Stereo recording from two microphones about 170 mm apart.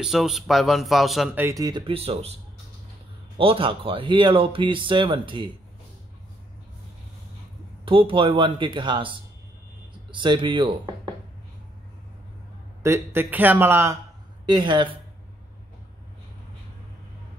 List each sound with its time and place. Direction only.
0.0 s speech: centre (ahead or behind); by 2.2 s 35° right (ahead or behind)
3.3 s speech: 30° right (ahead or behind)
7.8 s speech: 30° right (ahead or behind)
10.1 s speech: 30° right (ahead or behind)
12.8 s a man's voice: 15° right (ahead or behind)
14.5 s speech: 30° right (ahead or behind)